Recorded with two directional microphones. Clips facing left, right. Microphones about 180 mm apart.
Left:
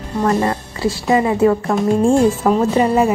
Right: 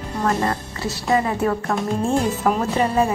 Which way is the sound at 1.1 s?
20° left (ahead or behind).